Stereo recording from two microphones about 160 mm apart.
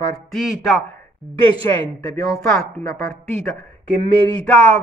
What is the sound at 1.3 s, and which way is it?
Speech, 35° right (ahead or behind).